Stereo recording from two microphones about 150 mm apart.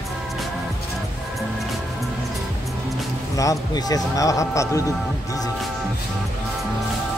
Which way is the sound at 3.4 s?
25° left (ahead or behind).